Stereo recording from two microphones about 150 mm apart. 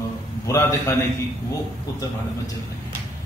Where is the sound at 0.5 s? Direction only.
20° left (ahead or behind).